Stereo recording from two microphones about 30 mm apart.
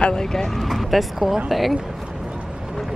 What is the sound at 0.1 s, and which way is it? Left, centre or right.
Speech, left.